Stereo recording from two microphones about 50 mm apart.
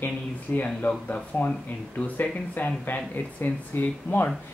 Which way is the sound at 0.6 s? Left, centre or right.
Left.